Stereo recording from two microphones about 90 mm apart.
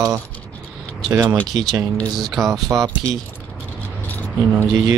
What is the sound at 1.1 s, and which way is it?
Speech, 30° right (ahead or behind).